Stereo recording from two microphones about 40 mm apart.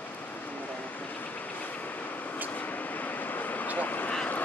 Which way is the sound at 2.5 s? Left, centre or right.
Left.